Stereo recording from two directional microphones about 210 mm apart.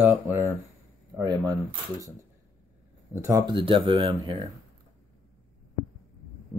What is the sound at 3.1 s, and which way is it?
Speech, 15° right (ahead or behind).